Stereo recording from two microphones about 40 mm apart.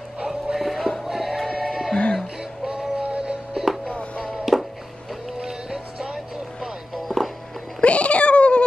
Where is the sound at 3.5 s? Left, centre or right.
Centre.